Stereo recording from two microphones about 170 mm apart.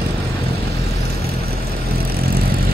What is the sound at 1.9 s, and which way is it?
Vehicle, 65° right (ahead or behind).